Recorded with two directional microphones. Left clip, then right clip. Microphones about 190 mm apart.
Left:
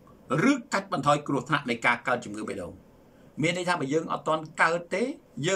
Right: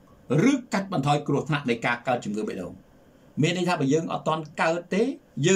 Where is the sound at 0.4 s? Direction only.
10° right (ahead or behind).